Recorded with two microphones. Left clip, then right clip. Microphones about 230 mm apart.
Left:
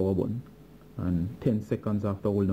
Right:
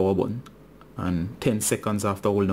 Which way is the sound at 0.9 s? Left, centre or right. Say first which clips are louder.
Right 4 dB; centre.